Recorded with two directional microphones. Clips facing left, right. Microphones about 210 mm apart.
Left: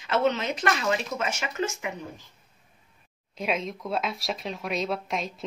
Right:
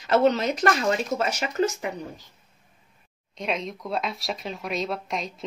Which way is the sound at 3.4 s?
5° left (ahead or behind).